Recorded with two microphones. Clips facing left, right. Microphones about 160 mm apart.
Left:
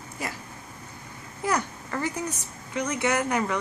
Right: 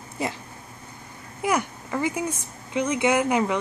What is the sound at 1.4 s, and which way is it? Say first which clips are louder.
A woman's voice: right 3 dB; 15° right (ahead or behind).